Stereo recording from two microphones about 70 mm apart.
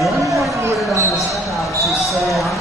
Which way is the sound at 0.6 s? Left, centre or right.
Right.